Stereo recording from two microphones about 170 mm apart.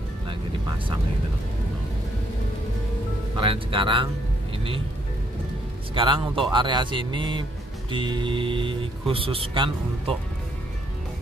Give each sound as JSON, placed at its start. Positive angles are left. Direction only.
{"t": 3.3, "sound": "speech", "side_deg": -30}
{"t": 5.9, "sound": "speech", "side_deg": -30}